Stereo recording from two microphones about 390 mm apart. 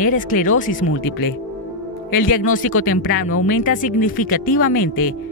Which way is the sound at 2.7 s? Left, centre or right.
Left.